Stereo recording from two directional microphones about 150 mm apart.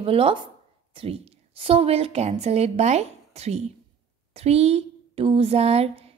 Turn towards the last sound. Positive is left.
turn(degrees=-40)  # may be behind; listen again after turning